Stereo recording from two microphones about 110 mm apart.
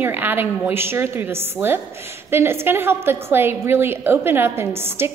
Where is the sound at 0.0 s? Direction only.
20° right (ahead or behind).